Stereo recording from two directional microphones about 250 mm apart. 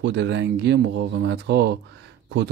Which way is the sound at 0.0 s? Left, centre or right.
Right.